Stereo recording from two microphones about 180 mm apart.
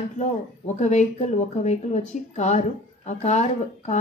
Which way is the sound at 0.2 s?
40° left (ahead or behind).